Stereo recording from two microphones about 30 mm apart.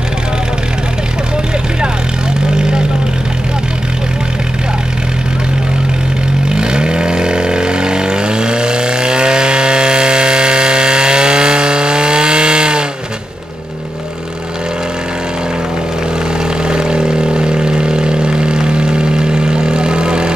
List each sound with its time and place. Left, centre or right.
2.5 s vehicle: right
6.5 s vehicle: right
16.6 s vehicle: right